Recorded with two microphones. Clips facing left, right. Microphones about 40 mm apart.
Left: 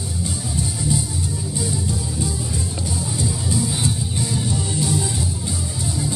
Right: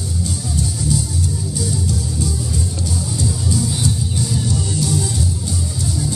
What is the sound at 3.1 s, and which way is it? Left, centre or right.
Music, left.